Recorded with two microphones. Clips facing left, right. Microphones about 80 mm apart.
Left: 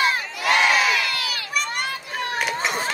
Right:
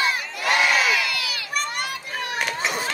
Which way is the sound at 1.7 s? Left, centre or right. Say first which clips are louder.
Left 1 dB; left.